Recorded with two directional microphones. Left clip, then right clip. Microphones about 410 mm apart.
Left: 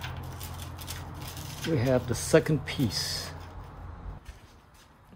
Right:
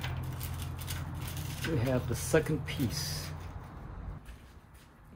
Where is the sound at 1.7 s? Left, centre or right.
Left.